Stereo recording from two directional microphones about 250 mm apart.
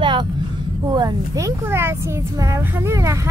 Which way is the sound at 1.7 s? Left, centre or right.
Centre.